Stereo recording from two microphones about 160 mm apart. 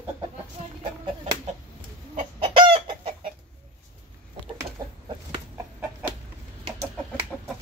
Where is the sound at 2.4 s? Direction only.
35° right (ahead or behind).